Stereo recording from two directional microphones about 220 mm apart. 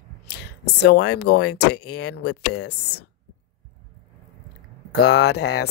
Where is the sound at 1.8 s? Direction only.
90° left.